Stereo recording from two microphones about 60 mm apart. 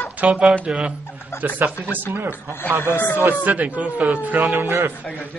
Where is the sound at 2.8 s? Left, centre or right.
Left.